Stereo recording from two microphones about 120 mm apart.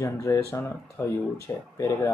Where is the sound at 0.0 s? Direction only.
25° left (ahead or behind).